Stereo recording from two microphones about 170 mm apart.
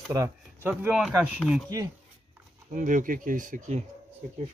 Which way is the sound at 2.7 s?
50° right (ahead or behind).